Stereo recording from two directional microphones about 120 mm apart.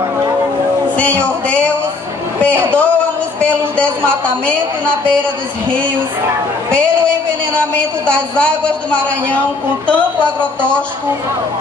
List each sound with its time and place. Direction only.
0.9 s a man's voice: 10° left (ahead or behind)
2.5 s a man's voice: 20° right (ahead or behind)
3.3 s a woman's voice: 10° left (ahead or behind)
8.1 s a woman's voice: 10° left (ahead or behind)